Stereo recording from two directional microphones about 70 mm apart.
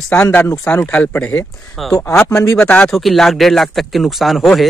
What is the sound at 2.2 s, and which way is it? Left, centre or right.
Speech, left.